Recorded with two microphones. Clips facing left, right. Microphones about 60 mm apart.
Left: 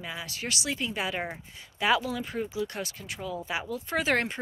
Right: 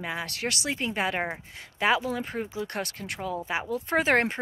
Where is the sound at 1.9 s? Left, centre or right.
Right.